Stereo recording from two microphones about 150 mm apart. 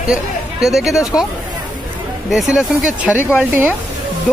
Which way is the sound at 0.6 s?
Centre (ahead or behind).